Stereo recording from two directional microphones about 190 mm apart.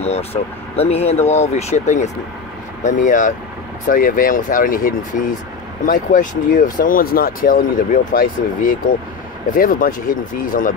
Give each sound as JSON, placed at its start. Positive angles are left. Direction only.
{"t": 0.0, "sound": "speech", "side_deg": 35}